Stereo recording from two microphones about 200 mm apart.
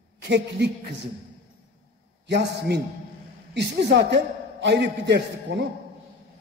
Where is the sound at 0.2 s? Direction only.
60° right (ahead or behind).